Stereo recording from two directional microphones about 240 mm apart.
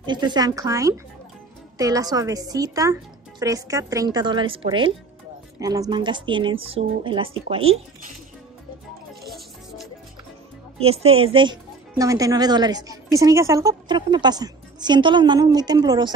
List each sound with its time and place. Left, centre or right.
0.0 s a woman's voice: centre
10.8 s a woman's voice: right